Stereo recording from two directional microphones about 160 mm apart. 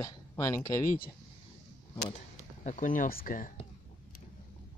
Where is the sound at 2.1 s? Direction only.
50° left (ahead or behind).